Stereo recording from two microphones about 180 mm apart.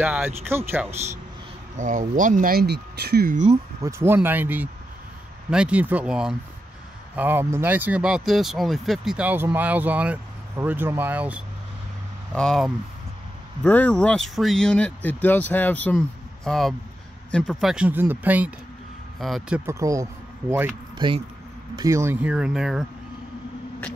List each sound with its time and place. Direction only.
0.0 s speech: 10° right (ahead or behind)
1.8 s speech: 45° right (ahead or behind)
3.8 s speech: 10° right (ahead or behind)
12.4 s speech: centre (ahead or behind)
19.6 s speech: 15° right (ahead or behind)